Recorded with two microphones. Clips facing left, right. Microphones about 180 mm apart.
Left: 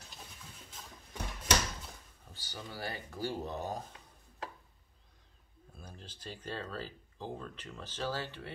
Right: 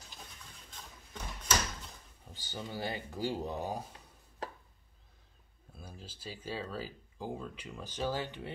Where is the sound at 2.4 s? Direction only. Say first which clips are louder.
Right 4 dB; 20° right (ahead or behind).